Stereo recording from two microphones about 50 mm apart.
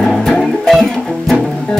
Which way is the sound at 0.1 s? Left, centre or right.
Centre.